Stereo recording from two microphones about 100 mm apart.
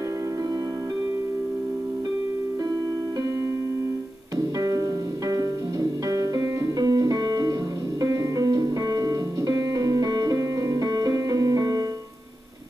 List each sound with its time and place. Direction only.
4.6 s music: 35° right (ahead or behind)